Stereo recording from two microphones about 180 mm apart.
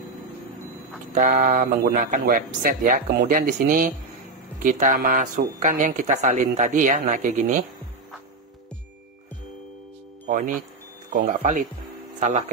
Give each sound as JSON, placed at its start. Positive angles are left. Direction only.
{"t": 1.1, "sound": "speech", "side_deg": -50}
{"t": 10.2, "sound": "speech", "side_deg": -45}